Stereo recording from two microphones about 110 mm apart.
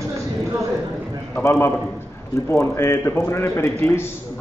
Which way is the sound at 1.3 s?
20° left (ahead or behind).